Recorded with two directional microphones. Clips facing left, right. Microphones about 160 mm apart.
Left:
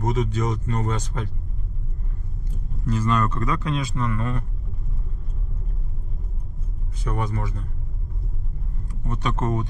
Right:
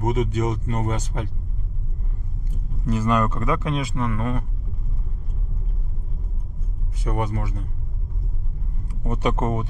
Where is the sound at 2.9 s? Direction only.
15° right (ahead or behind).